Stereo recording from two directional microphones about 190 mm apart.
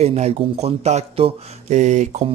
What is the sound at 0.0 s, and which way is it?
Speech, 35° right (ahead or behind).